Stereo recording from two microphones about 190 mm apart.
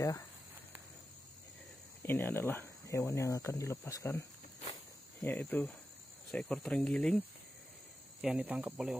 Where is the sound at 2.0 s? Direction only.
10° left (ahead or behind).